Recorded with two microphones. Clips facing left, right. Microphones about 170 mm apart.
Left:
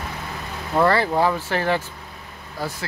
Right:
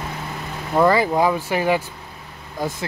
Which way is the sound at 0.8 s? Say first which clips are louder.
Right 2 dB; 10° right (ahead or behind).